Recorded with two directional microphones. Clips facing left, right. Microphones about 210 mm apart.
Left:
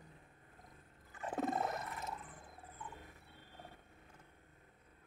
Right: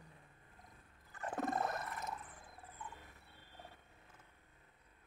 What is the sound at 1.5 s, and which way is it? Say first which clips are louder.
Whale vocalization: even; 20° left (ahead or behind).